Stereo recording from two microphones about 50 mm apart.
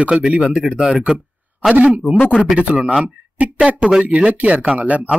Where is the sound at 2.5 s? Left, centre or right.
Right.